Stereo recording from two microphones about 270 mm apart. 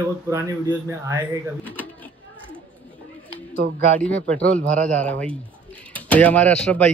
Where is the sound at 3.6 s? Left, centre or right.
Right.